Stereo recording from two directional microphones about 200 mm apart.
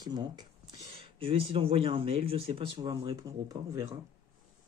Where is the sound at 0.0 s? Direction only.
20° right (ahead or behind).